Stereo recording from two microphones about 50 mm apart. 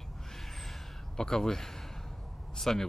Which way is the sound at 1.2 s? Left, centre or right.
Centre.